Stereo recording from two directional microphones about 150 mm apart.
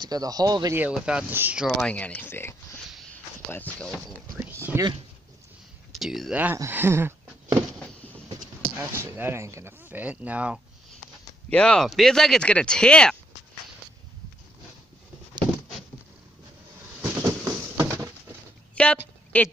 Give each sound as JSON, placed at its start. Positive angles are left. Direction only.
{"t": 0.0, "sound": "speech", "side_deg": -25}
{"t": 0.7, "sound": "speech", "side_deg": -5}
{"t": 1.9, "sound": "speech", "side_deg": 10}
{"t": 4.5, "sound": "a sound", "side_deg": -15}
{"t": 5.9, "sound": "speech", "side_deg": 0}
{"t": 6.3, "sound": "speech", "side_deg": -15}
{"t": 8.7, "sound": "speech", "side_deg": -15}
{"t": 11.5, "sound": "speech", "side_deg": 5}
{"t": 17.1, "sound": "a sound", "side_deg": -20}
{"t": 18.8, "sound": "a sound", "side_deg": 10}
{"t": 19.3, "sound": "speech", "side_deg": 10}